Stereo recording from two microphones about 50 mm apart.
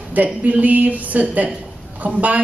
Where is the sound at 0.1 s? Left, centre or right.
Right.